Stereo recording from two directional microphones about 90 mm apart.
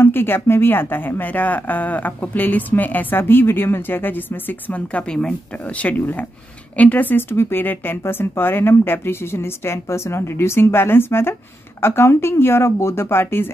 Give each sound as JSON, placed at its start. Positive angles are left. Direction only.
{"t": 0.0, "sound": "speech", "side_deg": 25}